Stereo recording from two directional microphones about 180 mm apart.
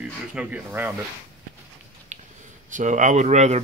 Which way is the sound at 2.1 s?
40° right (ahead or behind).